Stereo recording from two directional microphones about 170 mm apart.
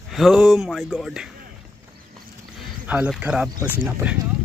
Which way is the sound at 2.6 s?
10° right (ahead or behind).